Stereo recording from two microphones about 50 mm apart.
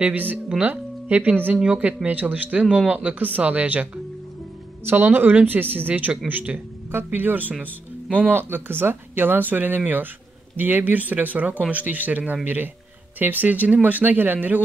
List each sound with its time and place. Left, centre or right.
0.0 s speech: right
4.8 s speech: right
6.9 s speech: right
8.4 s speech: right